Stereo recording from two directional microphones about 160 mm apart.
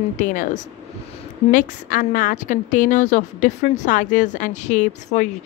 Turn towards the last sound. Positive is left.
turn(degrees=50)  # may be behind; listen again after turning